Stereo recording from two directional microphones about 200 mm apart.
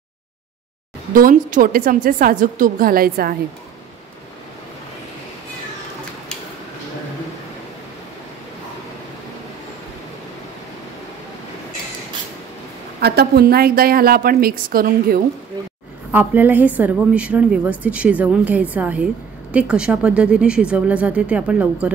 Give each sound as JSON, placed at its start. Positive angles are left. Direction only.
{"t": 1.1, "sound": "a woman's voice", "side_deg": -45}
{"t": 13.0, "sound": "a woman's voice", "side_deg": -50}
{"t": 16.1, "sound": "a woman's voice", "side_deg": -10}